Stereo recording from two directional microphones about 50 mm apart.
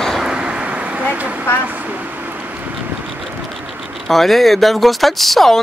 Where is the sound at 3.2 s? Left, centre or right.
Centre.